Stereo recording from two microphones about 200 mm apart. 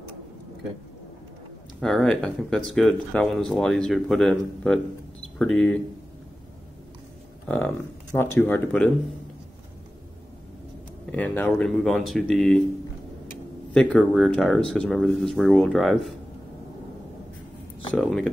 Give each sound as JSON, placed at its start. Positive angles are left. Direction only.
{"t": 1.8, "sound": "speech", "side_deg": 5}
{"t": 7.4, "sound": "speech", "side_deg": 5}
{"t": 11.1, "sound": "speech", "side_deg": 10}
{"t": 13.7, "sound": "speech", "side_deg": 0}
{"t": 17.9, "sound": "speech", "side_deg": 0}